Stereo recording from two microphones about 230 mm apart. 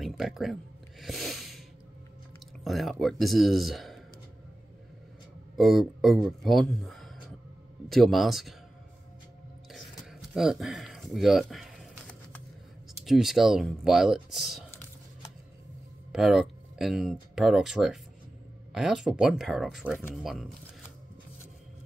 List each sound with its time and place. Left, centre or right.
0.0 s speech: centre
1.0 s a sound: centre
2.6 s speech: centre
5.6 s speech: centre
10.3 s a sound: centre
13.0 s speech: centre
16.1 s speech: centre